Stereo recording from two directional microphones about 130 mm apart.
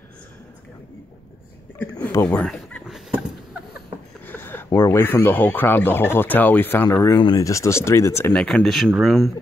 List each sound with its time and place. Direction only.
2.0 s speech: 15° left (ahead or behind)
4.3 s a sound: 15° left (ahead or behind)
4.7 s speech: 20° left (ahead or behind)
8.3 s speech: 5° left (ahead or behind)